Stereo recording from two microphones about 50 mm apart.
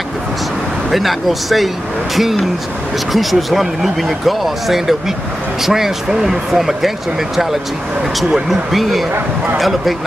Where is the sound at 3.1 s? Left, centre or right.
Centre.